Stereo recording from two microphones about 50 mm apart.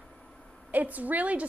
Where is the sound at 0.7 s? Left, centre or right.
Right.